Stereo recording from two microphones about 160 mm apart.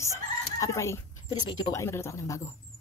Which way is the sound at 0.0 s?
20° left (ahead or behind).